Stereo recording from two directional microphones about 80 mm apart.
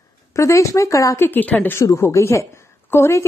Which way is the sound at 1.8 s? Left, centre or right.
Left.